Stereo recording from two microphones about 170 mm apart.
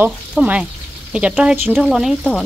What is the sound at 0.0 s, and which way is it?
Speech, 10° right (ahead or behind).